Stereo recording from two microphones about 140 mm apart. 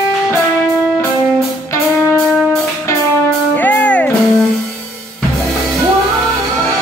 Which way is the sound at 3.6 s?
10° left (ahead or behind).